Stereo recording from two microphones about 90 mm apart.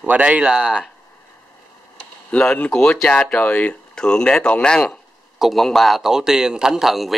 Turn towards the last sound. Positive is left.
turn(degrees=0)  # may be behind; listen again after turning